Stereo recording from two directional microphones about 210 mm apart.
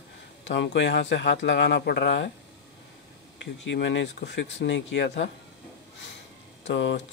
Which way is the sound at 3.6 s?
60° left (ahead or behind).